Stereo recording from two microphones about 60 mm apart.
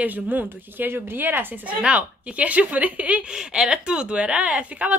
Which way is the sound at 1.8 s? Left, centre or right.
Right.